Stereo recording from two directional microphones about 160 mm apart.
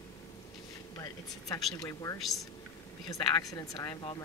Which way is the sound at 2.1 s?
Centre (ahead or behind).